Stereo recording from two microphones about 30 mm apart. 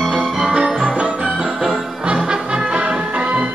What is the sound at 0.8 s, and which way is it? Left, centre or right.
Organ, right.